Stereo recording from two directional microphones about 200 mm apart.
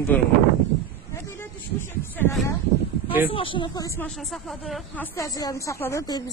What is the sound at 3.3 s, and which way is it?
Speech, 25° left (ahead or behind).